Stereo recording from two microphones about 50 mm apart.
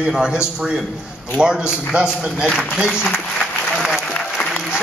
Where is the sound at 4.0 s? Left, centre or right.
Centre.